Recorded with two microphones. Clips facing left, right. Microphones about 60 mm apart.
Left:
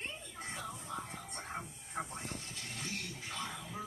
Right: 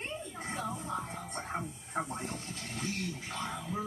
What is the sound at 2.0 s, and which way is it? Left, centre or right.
Speech, right.